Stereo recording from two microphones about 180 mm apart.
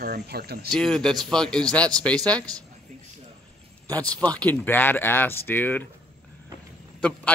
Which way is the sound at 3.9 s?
5° left (ahead or behind).